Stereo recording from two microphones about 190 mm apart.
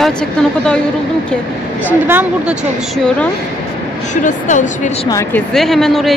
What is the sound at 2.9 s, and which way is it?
Speech, 5° left (ahead or behind).